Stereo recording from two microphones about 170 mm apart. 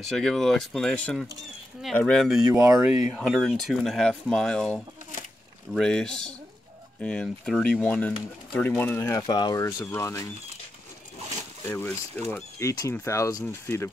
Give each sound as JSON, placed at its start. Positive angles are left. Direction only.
{"t": 0.0, "sound": "speech", "side_deg": 5}
{"t": 2.5, "sound": "speech", "side_deg": -15}
{"t": 3.2, "sound": "speech", "side_deg": 0}
{"t": 9.2, "sound": "speech", "side_deg": 25}
{"t": 11.6, "sound": "speech", "side_deg": 15}